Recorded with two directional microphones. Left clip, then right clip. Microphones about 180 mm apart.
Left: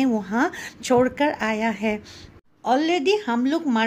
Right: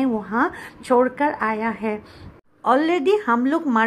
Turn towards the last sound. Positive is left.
turn(degrees=15)  # may be behind; listen again after turning